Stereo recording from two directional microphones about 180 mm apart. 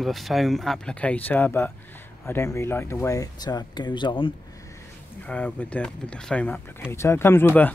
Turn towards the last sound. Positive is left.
turn(degrees=10)  # may be behind; listen again after turning